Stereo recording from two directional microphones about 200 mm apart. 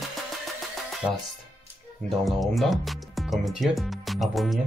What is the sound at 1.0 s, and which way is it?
Music, 5° right (ahead or behind).